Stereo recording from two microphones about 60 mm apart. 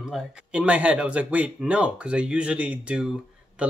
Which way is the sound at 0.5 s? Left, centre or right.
Right.